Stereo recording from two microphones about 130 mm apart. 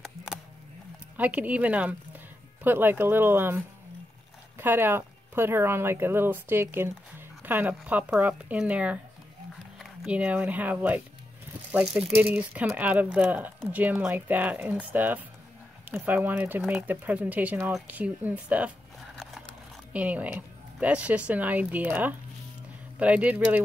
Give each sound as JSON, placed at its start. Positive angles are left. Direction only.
{"t": 0.0, "sound": "a sound", "side_deg": -5}
{"t": 1.1, "sound": "speech", "side_deg": -10}
{"t": 19.9, "sound": "speech", "side_deg": -10}